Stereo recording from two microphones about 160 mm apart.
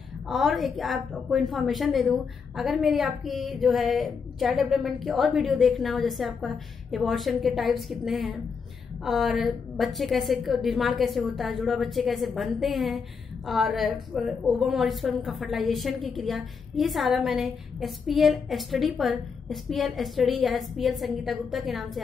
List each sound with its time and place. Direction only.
0.3 s a woman's voice: centre (ahead or behind)